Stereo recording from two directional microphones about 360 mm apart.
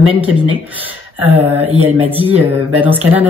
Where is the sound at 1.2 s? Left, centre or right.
Centre.